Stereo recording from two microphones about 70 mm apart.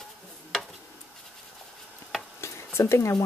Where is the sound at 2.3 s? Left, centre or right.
Left.